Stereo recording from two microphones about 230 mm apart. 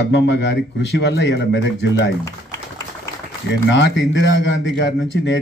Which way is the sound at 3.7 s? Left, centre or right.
Left.